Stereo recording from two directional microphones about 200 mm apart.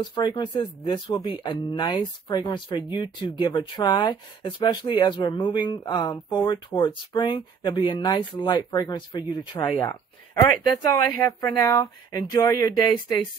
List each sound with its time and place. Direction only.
0.1 s speech: 20° left (ahead or behind)